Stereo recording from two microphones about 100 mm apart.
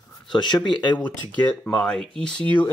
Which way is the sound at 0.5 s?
50° left (ahead or behind).